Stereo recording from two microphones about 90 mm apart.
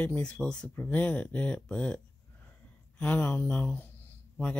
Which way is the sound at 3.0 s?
20° left (ahead or behind).